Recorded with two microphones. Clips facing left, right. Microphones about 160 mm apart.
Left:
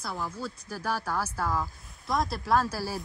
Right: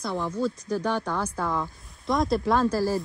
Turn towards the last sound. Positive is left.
turn(degrees=10)  # may be behind; listen again after turning